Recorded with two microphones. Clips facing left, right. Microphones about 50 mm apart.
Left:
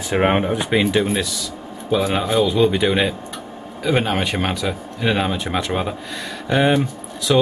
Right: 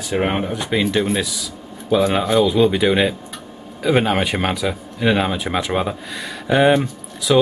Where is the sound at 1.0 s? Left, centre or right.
Centre.